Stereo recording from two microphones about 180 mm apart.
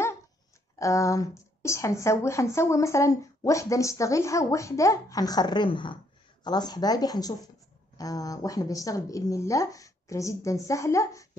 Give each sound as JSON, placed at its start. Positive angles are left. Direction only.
{"t": 0.7, "sound": "speech", "side_deg": 15}